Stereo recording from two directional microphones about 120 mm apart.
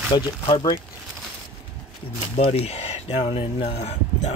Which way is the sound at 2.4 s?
60° left (ahead or behind).